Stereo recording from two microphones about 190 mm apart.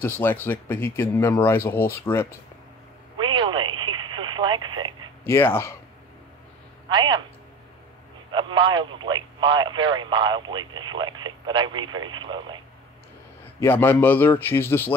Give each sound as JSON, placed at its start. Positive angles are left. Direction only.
{"t": 0.0, "sound": "speech", "side_deg": 10}
{"t": 3.2, "sound": "telephone", "side_deg": -25}
{"t": 5.2, "sound": "speech", "side_deg": 10}
{"t": 6.9, "sound": "speech", "side_deg": -25}
{"t": 8.3, "sound": "speech", "side_deg": -25}
{"t": 13.6, "sound": "speech", "side_deg": 10}